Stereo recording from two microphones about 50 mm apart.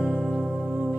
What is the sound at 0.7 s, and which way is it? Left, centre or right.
Music, right.